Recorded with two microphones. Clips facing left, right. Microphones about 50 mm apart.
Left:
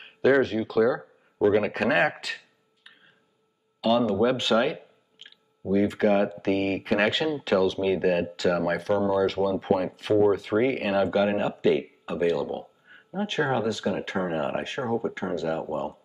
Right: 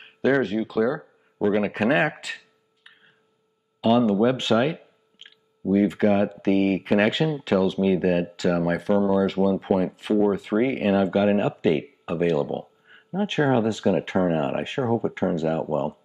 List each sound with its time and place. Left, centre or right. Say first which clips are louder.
0.0 s speech: left 1 dB; centre
4.2 s speech: right 2 dB; centre
11.3 s speech: right 1 dB; right
12.3 s a sound: right 3 dB; right
13.4 s speech: right 4 dB; right